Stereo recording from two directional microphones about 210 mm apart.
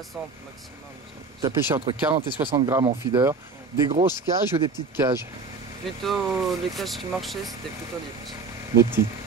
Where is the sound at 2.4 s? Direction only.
15° right (ahead or behind).